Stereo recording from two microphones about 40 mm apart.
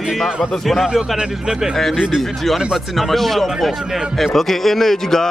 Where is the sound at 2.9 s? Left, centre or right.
Centre.